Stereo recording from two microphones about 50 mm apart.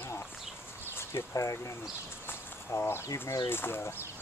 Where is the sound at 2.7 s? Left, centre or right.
Left.